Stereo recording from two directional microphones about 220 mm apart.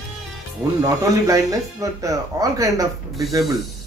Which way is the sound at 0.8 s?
15° right (ahead or behind).